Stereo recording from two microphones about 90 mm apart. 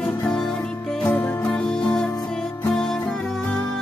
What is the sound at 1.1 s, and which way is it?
Music, 20° left (ahead or behind).